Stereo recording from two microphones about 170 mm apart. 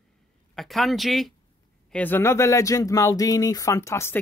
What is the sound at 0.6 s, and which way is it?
Speech, centre (ahead or behind).